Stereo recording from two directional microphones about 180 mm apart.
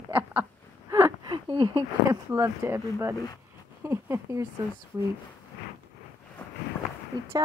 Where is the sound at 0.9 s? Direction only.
15° right (ahead or behind).